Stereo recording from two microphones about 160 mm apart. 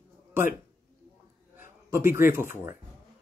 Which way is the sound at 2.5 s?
15° right (ahead or behind).